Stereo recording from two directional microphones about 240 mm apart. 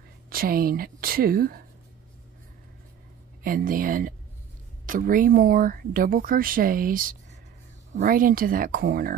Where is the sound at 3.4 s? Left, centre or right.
Right.